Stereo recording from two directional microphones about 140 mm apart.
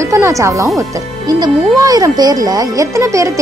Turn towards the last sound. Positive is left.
turn(degrees=-25)  # may be behind; listen again after turning